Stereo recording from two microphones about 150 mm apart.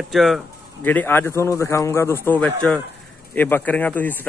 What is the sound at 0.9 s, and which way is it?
Speech, 15° left (ahead or behind).